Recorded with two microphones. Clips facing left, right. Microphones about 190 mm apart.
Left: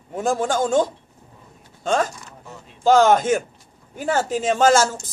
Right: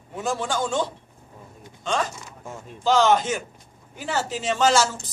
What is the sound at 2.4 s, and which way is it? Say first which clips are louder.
Mechanisms: right 4 dB; 50° right (ahead or behind).